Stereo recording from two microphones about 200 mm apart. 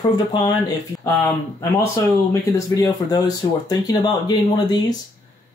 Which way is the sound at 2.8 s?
20° left (ahead or behind).